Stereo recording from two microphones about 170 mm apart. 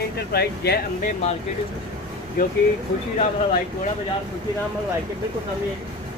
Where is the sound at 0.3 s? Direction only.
70° left (ahead or behind).